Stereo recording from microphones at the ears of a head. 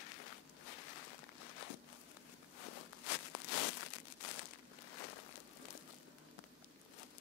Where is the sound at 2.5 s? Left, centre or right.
Left.